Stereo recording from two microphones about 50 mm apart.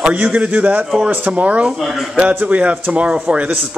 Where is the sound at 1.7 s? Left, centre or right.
Centre.